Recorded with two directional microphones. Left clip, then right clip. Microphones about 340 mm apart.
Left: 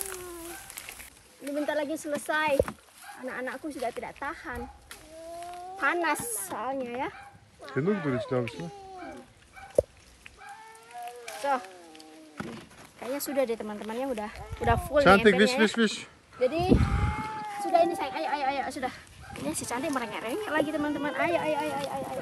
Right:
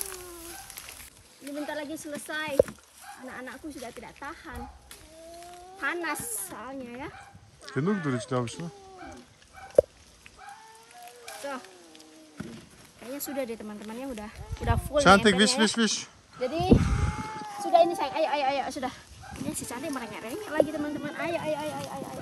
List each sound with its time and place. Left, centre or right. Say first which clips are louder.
1.7 s speech: left 7 dB; centre
12.4 s speech: left 4 dB; centre
17.5 s a sound: right 3 dB; right
19.4 s speech: left 4 dB; centre